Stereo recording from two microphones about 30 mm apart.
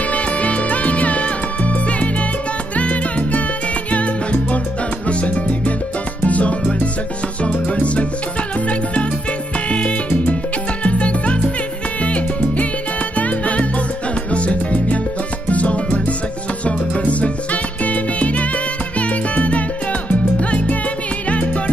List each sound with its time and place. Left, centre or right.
0.1 s music: left
2.7 s salsa music: left
3.9 s music: left
7.5 s music: left
9.7 s salsa music: left
10.8 s music: left
12.0 s salsa music: left
13.1 s music: left
14.3 s salsa music: left
15.5 s music: left
18.9 s salsa music: left
21.3 s music: left